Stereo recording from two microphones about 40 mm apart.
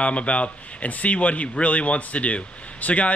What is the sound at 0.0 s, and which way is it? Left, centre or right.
Speech, left.